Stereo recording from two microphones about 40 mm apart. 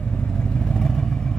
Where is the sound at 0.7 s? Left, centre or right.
Centre.